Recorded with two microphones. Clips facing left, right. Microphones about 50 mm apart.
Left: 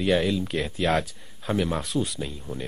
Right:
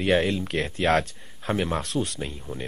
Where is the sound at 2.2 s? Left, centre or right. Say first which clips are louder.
Even; right.